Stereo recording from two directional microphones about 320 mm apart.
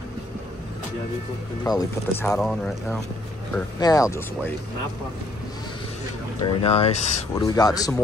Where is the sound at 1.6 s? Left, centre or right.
Centre.